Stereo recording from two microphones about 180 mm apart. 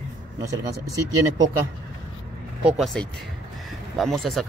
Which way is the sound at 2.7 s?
Centre (ahead or behind).